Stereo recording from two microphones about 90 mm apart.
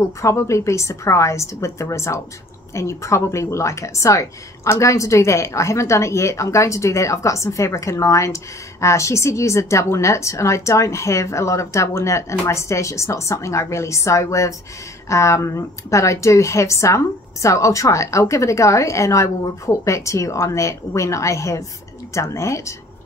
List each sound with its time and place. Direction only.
0.0 s speech: 35° left (ahead or behind)